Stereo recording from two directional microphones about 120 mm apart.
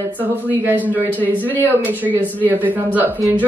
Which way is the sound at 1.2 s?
15° left (ahead or behind).